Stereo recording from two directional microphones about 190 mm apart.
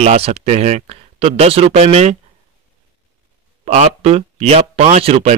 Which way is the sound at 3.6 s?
35° right (ahead or behind).